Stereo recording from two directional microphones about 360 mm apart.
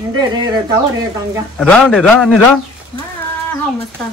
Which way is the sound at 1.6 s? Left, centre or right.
Centre.